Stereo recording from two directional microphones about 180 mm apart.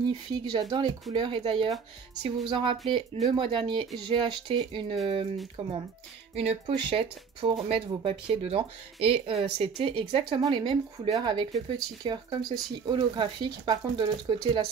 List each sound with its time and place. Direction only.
0.0 s speech: 25° right (ahead or behind)